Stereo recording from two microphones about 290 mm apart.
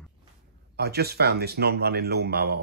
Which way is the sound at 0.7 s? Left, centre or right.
Right.